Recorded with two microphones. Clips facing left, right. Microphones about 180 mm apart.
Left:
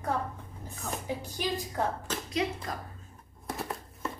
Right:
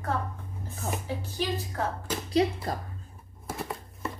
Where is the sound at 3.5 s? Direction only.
Centre (ahead or behind).